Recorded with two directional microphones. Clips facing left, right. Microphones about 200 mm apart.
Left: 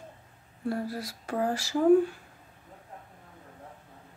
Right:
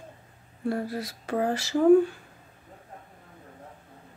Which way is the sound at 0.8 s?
20° right (ahead or behind).